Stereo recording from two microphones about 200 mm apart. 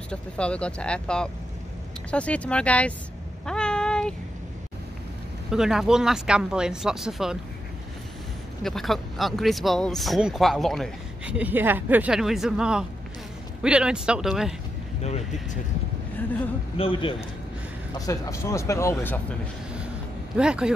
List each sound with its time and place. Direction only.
0.1 s speech: 5° left (ahead or behind)
3.4 s a sound: 5° left (ahead or behind)
5.5 s speech: centre (ahead or behind)
8.6 s speech: centre (ahead or behind)
16.7 s a man's voice: 25° left (ahead or behind); by 19.2 s 10° left (ahead or behind)
20.3 s speech: 5° right (ahead or behind)